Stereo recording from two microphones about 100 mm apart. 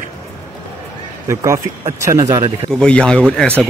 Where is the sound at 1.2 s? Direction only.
30° right (ahead or behind).